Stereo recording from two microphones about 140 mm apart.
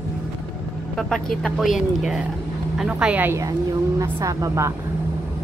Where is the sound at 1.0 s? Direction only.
5° left (ahead or behind); by 4.7 s 20° right (ahead or behind).